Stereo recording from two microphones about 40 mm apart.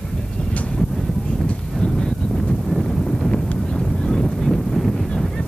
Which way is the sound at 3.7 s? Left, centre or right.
Centre.